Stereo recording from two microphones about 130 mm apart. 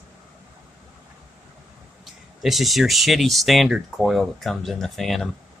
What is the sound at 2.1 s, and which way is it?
Speech, centre (ahead or behind).